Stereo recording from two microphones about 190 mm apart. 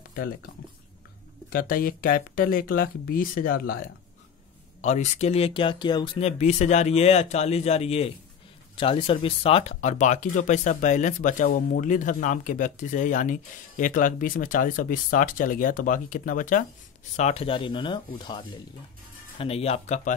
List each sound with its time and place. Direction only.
1.5 s speech: 50° left (ahead or behind)
4.8 s speech: 40° left (ahead or behind)
17.2 s speech: 35° left (ahead or behind)